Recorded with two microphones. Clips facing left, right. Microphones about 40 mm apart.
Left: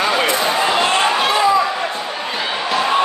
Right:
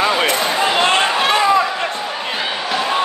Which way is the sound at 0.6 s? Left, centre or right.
Centre.